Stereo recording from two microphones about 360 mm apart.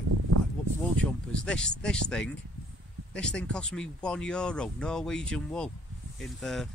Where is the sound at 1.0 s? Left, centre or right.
Right.